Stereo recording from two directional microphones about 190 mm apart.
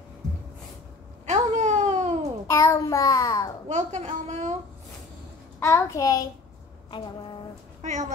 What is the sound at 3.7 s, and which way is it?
Speech, 40° right (ahead or behind).